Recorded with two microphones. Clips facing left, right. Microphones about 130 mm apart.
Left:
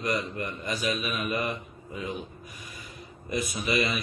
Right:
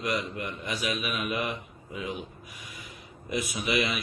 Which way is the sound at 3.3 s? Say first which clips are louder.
Left 1 dB; 5° right (ahead or behind).